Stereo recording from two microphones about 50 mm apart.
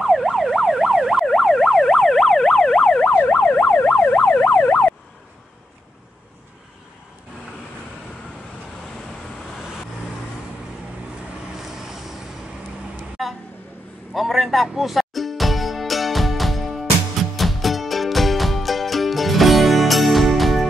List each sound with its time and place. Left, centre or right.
0.0 s emergency vehicle: centre
3.1 s emergency vehicle: left
11.6 s vehicle: centre
13.2 s a sound: centre
14.1 s music: centre